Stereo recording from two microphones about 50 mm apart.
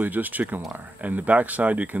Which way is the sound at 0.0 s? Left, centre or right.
Right.